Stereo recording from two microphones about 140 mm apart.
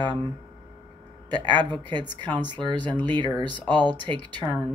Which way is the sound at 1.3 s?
30° right (ahead or behind).